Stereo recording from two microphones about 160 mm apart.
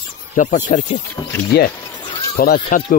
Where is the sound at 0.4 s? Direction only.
55° left (ahead or behind).